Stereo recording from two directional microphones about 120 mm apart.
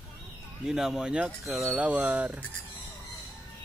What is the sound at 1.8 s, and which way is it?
Mantra, 10° right (ahead or behind).